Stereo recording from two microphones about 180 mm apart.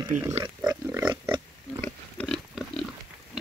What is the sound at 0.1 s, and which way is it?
Speech, 45° right (ahead or behind).